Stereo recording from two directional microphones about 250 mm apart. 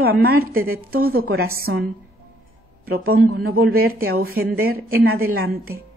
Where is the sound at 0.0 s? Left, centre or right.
Right.